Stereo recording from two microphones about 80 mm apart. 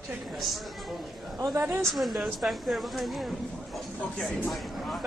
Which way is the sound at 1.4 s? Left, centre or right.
Right.